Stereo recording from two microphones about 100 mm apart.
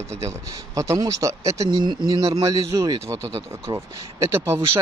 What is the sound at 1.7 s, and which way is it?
Speech, 50° right (ahead or behind).